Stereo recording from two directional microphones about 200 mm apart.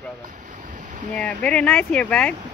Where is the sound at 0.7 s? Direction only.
40° right (ahead or behind).